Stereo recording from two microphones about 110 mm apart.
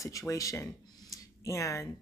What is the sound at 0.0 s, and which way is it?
Speech, 30° left (ahead or behind).